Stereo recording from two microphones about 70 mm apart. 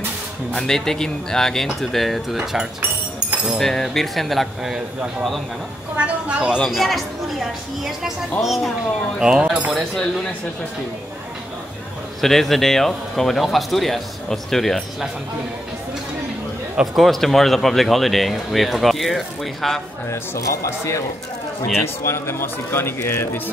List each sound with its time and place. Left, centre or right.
0.5 s speech: centre
3.4 s speech: centre
5.9 s speech: centre
6.6 s speech: centre
9.2 s speech: centre
12.2 s speech: centre
16.9 s speech: centre
20.1 s a man's voice: left